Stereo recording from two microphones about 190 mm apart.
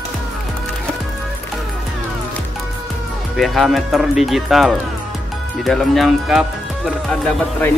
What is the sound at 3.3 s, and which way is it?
A man's voice, centre (ahead or behind).